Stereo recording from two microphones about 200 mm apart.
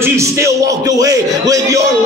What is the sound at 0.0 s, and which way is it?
Speech, 15° right (ahead or behind).